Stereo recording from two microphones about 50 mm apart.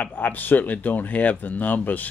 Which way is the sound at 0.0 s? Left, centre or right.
Left.